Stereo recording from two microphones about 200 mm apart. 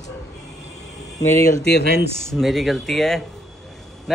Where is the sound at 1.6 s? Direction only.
55° left (ahead or behind).